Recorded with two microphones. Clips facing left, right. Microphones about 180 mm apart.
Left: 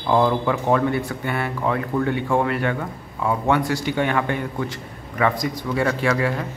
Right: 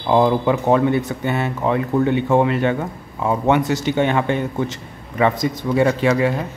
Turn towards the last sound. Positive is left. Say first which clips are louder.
# right 4 dB
turn(degrees=-20)  # may be behind; listen again after turning